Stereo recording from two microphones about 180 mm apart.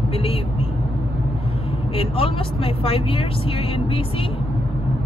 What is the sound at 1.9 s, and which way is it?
Speech, 30° left (ahead or behind).